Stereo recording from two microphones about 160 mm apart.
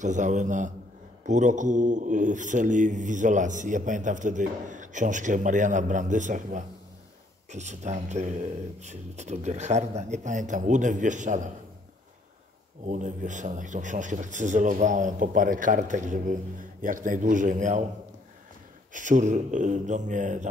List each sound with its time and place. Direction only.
0.0 s speech: 50° right (ahead or behind)
12.8 s speech: 50° right (ahead or behind)
18.9 s speech: 50° right (ahead or behind)